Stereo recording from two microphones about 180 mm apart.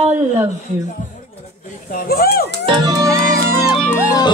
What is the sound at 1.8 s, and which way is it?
Speech, 55° left (ahead or behind).